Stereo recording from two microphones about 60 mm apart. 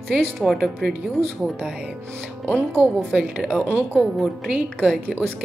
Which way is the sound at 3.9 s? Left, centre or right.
Centre.